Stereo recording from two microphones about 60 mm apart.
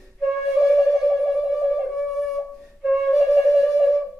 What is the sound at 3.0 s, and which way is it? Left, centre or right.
Music, centre.